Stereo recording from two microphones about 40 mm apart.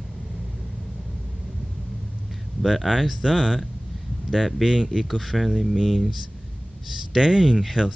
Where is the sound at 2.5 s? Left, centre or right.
Centre.